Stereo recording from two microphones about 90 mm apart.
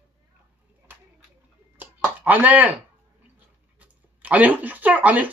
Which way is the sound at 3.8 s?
15° right (ahead or behind).